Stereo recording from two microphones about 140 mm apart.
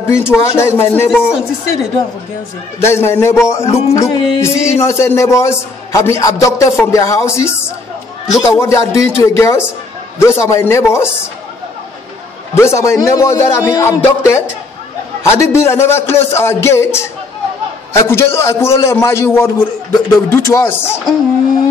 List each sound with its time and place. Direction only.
0.0 s speech: 20° left (ahead or behind)
1.1 s speech: centre (ahead or behind)
2.8 s a man's voice: 20° left (ahead or behind)
12.5 s a man's voice: 20° left (ahead or behind)